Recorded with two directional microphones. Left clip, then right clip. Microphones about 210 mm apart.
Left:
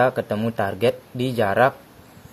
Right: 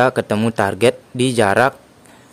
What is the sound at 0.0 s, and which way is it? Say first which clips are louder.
Speech: right 4 dB; 30° right (ahead or behind).